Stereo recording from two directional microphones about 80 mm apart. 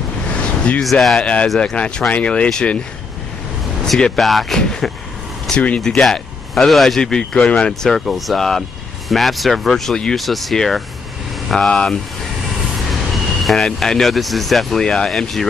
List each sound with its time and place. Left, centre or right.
0.4 s vehicle: centre
0.8 s speech: centre
3.8 s speech: centre
5.8 s speech: centre
7.9 s speech: centre
13.1 s vehicle: centre
13.7 s speech: centre